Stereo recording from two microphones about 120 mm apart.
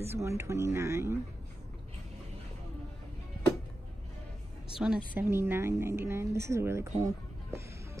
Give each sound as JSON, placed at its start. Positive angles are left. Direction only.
{"t": 0.2, "sound": "speech", "side_deg": -25}
{"t": 4.7, "sound": "speech", "side_deg": -5}
{"t": 5.1, "sound": "speech", "side_deg": -20}
{"t": 7.0, "sound": "a sound", "side_deg": -25}